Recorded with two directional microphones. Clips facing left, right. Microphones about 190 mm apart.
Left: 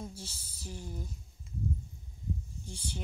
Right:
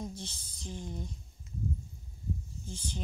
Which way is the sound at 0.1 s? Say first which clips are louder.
Right 3 dB; 10° left (ahead or behind).